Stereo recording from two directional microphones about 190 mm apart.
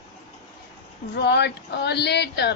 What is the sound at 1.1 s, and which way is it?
A man's voice, 60° left (ahead or behind).